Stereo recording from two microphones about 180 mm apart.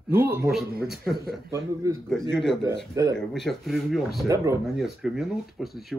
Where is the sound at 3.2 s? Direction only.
Centre (ahead or behind).